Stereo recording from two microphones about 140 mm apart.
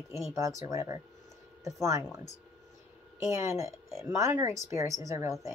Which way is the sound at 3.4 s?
20° right (ahead or behind).